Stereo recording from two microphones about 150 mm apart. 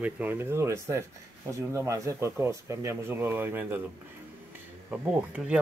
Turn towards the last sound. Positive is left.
turn(degrees=-10)  # may be behind; listen again after turning